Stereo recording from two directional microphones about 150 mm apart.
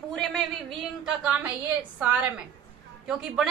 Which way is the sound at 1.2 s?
10° right (ahead or behind).